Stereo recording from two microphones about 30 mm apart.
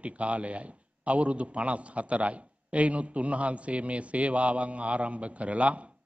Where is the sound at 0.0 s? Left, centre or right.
Right.